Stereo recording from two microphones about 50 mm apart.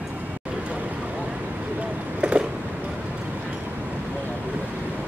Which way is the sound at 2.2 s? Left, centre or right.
Right.